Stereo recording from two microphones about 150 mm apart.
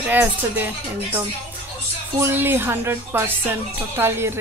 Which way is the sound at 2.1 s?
15° right (ahead or behind).